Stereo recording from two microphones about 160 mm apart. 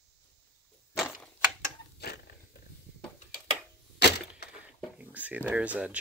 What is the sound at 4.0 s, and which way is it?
Crack, 90° left.